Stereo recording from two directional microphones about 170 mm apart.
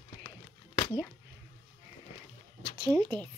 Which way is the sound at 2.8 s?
30° right (ahead or behind).